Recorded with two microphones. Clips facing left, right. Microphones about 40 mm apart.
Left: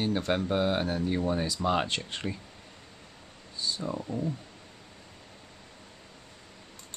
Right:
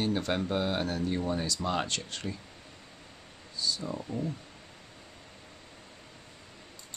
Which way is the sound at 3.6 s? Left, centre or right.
Left.